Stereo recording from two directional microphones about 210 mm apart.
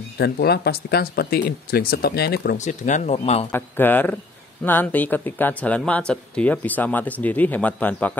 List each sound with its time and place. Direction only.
0.2 s speech: 50° left (ahead or behind)
2.5 s speech: 35° left (ahead or behind)
3.5 s speech: 10° left (ahead or behind)